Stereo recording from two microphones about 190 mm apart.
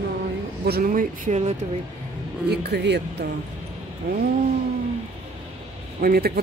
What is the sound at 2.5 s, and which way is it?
Speech, 60° right (ahead or behind).